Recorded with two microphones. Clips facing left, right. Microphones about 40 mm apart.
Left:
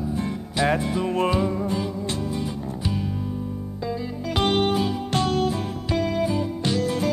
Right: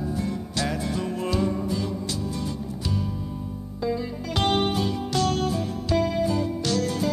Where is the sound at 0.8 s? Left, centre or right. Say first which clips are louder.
Left 5 dB; left.